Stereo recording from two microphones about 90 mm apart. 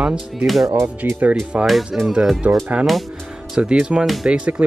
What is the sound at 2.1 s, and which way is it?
Speech, centre (ahead or behind).